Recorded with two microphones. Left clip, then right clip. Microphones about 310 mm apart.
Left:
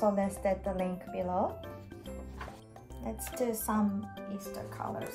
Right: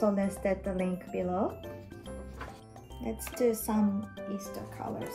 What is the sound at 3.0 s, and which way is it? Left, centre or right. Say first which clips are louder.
Speech: right 5 dB; left.